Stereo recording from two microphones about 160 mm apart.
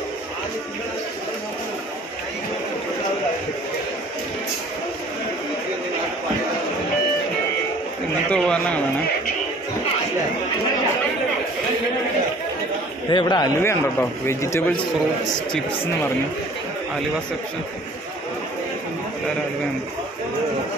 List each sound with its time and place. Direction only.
8.3 s a man's voice: 5° left (ahead or behind)
13.1 s a man's voice: 30° left (ahead or behind)
13.6 s a man's voice: 15° left (ahead or behind)